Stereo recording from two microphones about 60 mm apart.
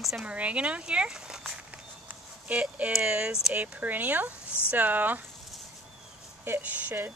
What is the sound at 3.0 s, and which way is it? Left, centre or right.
Speech, centre.